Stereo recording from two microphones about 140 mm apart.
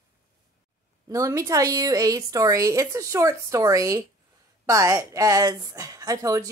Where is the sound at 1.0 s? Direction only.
25° right (ahead or behind).